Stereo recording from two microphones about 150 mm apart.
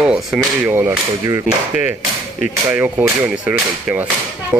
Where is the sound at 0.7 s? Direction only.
15° right (ahead or behind).